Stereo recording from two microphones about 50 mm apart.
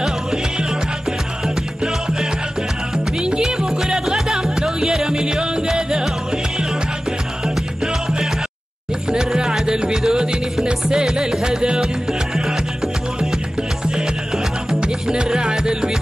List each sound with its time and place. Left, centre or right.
1.4 s music: centre